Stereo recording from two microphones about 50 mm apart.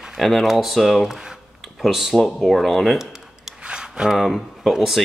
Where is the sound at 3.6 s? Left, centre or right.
Centre.